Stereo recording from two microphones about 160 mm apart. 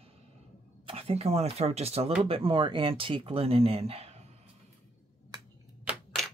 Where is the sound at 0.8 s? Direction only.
35° right (ahead or behind).